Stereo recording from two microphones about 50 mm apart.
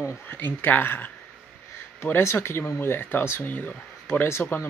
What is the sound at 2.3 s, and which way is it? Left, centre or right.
Speech, left.